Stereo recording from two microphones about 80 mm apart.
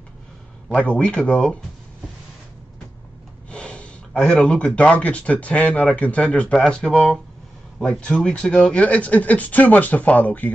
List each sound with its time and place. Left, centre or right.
0.7 s speech: centre
3.4 s speech: centre